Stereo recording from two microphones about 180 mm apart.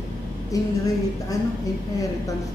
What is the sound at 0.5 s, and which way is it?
Speech, 20° left (ahead or behind).